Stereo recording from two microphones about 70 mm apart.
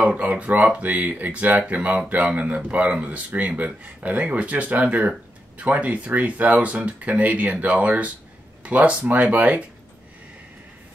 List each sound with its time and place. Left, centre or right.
0.0 s speech: right